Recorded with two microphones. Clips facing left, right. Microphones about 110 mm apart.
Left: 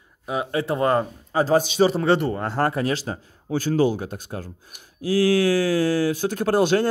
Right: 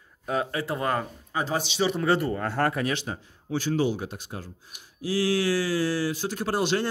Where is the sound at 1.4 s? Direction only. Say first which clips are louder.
Left 8 dB; 45° left (ahead or behind).